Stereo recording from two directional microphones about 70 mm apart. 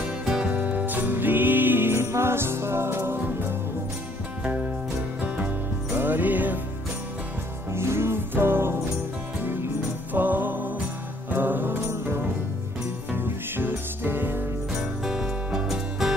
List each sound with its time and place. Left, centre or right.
0.3 s music: centre; by 3.5 s right
5.9 s music: right
7.7 s music: right
10.1 s music: right
14.8 s music: centre